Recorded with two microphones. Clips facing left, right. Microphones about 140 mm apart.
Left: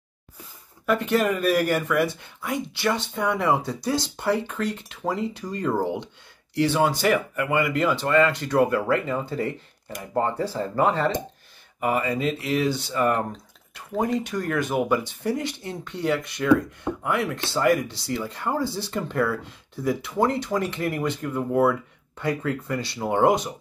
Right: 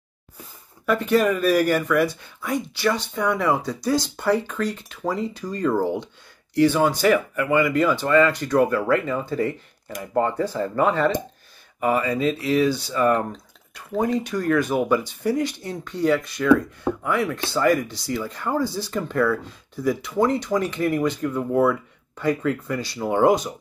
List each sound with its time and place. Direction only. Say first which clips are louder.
0.8 s speech: right 2 dB; 20° left (ahead or behind)
16.9 s speech: right 5 dB; 45° right (ahead or behind)
17.2 s speech: right 2 dB; 25° left (ahead or behind)